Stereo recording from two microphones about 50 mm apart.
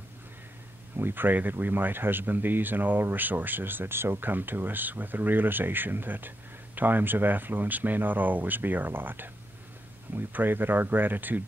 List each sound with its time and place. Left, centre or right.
0.9 s speech: right